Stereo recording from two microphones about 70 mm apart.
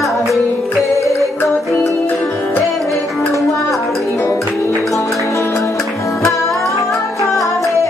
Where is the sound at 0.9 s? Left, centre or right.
Left.